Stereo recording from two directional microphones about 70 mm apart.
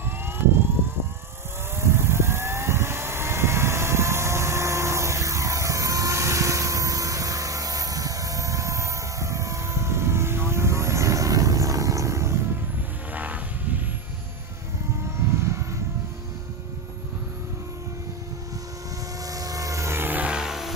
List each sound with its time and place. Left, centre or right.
1.8 s vehicle: right
13.1 s vehicle: right
15.3 s vehicle: right
19.3 s vehicle: right
20.0 s music: right
20.2 s vehicle: centre